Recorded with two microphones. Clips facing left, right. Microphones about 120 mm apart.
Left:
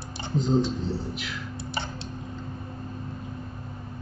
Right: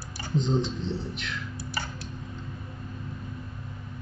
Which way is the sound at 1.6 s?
25° left (ahead or behind).